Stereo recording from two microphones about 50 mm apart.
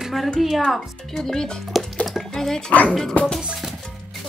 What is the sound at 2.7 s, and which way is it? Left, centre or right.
Speech, left.